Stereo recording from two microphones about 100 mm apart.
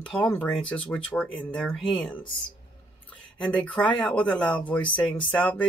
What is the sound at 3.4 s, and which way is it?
Speech, 10° left (ahead or behind).